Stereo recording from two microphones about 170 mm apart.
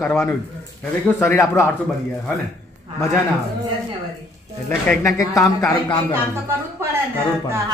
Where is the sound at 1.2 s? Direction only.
15° left (ahead or behind).